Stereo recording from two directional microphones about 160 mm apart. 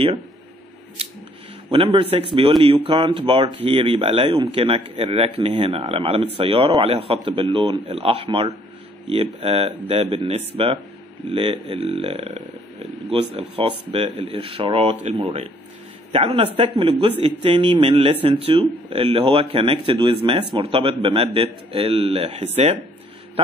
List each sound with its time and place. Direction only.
1.7 s speech: 35° right (ahead or behind)